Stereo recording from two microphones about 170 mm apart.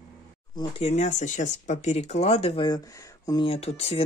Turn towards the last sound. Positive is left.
turn(degrees=35)  # may be behind; listen again after turning